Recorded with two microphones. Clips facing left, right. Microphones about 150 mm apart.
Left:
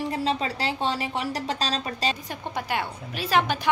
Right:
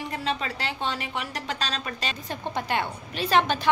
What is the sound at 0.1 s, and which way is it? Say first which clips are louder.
A woman's voice: left 3 dB; 30° left (ahead or behind).